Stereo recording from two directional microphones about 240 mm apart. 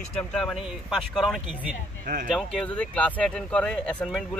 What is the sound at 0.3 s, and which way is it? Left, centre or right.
Speech, centre.